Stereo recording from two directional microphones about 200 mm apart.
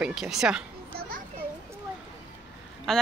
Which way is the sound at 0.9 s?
45° right (ahead or behind).